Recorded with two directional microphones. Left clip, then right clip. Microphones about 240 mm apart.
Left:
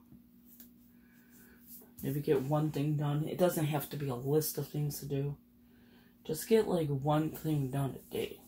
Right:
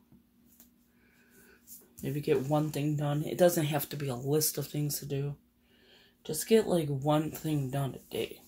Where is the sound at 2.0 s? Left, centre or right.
Right.